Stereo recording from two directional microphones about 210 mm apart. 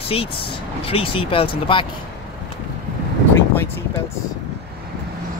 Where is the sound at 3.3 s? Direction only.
10° left (ahead or behind).